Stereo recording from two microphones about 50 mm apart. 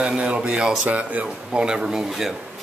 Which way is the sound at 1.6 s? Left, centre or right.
Centre.